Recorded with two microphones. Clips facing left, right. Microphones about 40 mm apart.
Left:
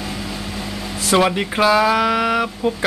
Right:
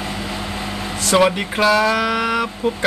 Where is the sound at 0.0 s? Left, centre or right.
Right.